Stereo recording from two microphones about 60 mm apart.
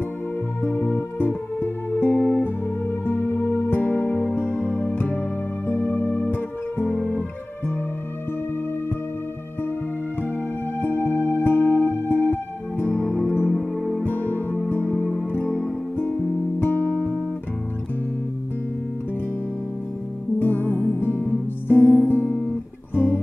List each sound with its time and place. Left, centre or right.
0.6 s music: left
10.8 s music: left
13.0 s music: centre
13.3 s music: left
13.6 s music: centre
14.0 s music: left
15.0 s music: centre
15.3 s music: left
20.3 s music: left